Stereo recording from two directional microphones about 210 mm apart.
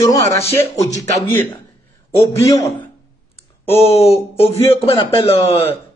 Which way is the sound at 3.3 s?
30° left (ahead or behind).